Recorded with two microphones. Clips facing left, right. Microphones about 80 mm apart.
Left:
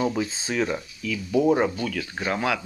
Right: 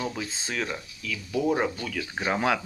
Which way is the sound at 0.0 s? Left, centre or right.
Centre.